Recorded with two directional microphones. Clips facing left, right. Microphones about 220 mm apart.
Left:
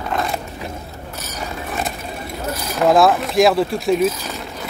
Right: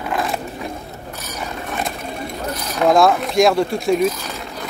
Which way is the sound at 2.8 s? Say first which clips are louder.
Even; centre (ahead or behind).